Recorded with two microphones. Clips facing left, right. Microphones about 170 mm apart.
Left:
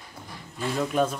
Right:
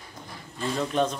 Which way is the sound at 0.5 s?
5° left (ahead or behind).